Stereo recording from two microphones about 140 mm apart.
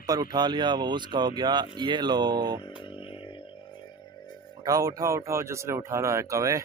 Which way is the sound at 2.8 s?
40° left (ahead or behind).